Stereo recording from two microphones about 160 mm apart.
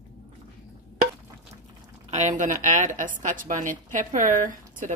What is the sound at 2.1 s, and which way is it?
A woman's voice, 50° right (ahead or behind).